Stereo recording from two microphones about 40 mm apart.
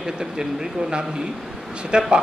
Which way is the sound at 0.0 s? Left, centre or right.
Centre.